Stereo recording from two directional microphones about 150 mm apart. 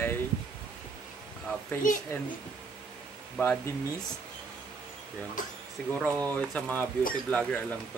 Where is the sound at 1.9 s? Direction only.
60° left (ahead or behind).